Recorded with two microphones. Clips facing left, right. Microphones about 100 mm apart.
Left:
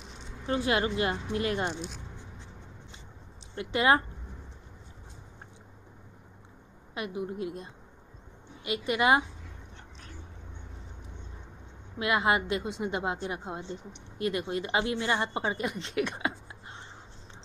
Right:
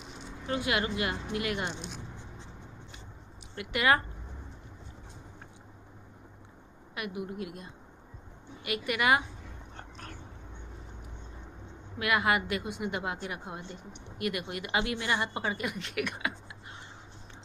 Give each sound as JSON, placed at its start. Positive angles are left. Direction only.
{"t": 0.5, "sound": "speech", "side_deg": 30}
{"t": 3.5, "sound": "a woman's voice", "side_deg": 25}
{"t": 6.9, "sound": "a woman's voice", "side_deg": 25}
{"t": 9.8, "sound": "dog", "side_deg": -50}
{"t": 12.0, "sound": "a woman's voice", "side_deg": 25}